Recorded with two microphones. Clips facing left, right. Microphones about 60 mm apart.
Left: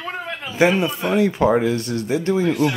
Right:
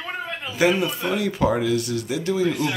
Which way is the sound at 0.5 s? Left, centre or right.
Left.